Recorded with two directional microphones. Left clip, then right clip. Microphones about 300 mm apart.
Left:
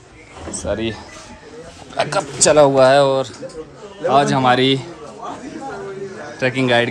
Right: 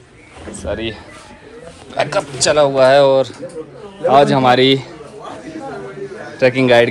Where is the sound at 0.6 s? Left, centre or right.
Centre.